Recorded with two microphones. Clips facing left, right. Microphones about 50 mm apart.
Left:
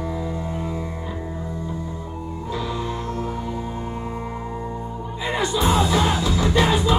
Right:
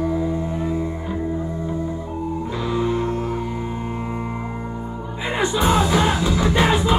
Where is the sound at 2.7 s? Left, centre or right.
Right.